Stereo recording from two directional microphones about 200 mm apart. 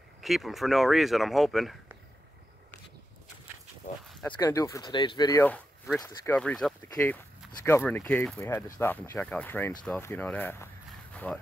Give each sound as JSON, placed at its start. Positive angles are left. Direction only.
{"t": 0.2, "sound": "speech", "side_deg": 0}
{"t": 4.4, "sound": "speech", "side_deg": 15}